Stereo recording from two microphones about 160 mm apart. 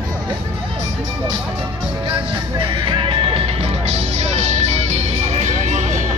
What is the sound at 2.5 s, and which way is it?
Music, 30° right (ahead or behind).